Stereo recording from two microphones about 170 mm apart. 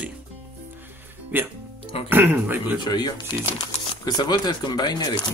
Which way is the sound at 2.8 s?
25° left (ahead or behind).